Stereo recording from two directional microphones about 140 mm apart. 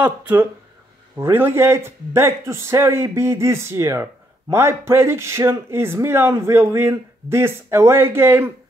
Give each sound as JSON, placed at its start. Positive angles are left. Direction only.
{"t": 0.0, "sound": "a man's voice", "side_deg": -10}